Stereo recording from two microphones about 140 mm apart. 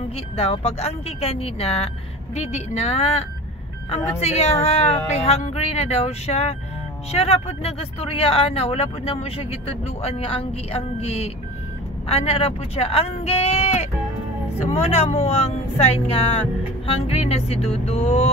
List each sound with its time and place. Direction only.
0.4 s speech: 45° left (ahead or behind)